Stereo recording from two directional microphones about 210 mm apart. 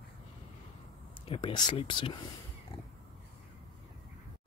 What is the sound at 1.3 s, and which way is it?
Speech, 20° left (ahead or behind).